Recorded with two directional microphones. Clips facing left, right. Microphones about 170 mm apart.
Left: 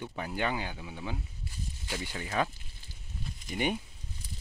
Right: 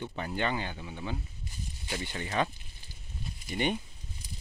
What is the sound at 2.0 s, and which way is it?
Speech, 5° left (ahead or behind).